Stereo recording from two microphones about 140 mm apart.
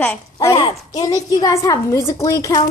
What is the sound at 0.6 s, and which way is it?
Speech, 35° left (ahead or behind).